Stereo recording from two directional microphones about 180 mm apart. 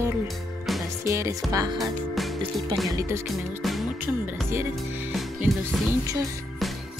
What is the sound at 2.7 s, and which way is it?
Speech, 25° right (ahead or behind).